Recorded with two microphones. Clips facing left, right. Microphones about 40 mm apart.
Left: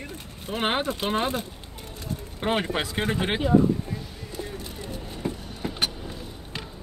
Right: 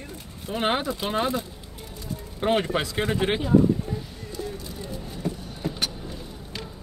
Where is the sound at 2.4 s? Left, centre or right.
Centre.